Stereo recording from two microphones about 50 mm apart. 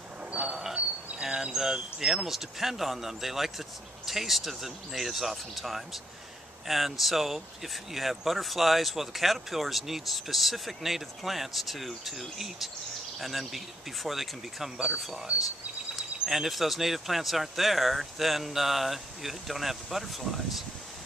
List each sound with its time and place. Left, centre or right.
0.4 s a sound: centre
0.7 s insect: right
1.2 s speech: centre
16.3 s speech: centre